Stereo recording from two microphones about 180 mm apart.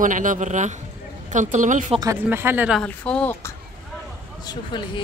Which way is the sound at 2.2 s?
10° right (ahead or behind).